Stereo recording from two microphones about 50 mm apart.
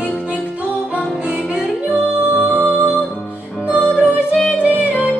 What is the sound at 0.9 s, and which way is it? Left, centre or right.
Music, right.